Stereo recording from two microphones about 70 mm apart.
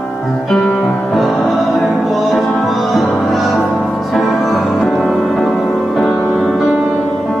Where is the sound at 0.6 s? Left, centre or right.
Centre.